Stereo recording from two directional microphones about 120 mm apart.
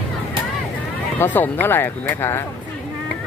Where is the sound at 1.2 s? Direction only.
15° left (ahead or behind).